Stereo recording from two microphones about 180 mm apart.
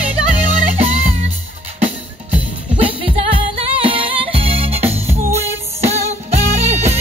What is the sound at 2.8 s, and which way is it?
Music, 30° right (ahead or behind).